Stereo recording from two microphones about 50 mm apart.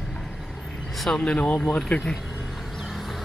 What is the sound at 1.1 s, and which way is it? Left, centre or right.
Speech, centre.